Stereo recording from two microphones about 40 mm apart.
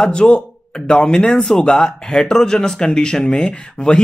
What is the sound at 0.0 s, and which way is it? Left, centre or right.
A man's voice, left.